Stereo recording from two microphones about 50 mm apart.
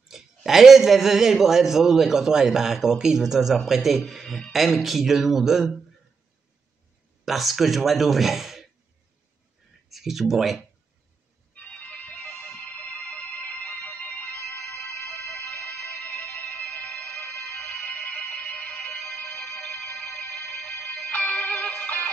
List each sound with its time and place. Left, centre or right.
0.1 s a sound: centre
0.5 s a man's voice: centre
7.2 s speech: centre
9.8 s speech: centre
11.5 s music: left
15.2 s music: centre
15.5 s music: left
17.6 s music: left
21.1 s music: left